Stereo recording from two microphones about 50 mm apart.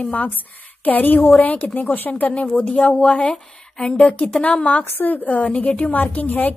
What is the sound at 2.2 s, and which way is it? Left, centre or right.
A woman's voice, left.